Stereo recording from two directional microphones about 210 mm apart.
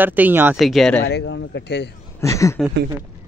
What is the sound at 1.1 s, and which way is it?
Speech, 55° left (ahead or behind).